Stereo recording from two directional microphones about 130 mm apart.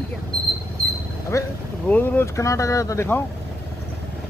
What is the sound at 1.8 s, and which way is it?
Speech, 15° left (ahead or behind).